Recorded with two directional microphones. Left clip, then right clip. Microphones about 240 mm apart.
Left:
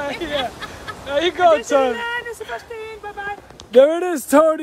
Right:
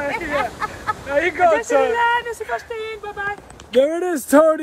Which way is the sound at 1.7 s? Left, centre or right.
Left.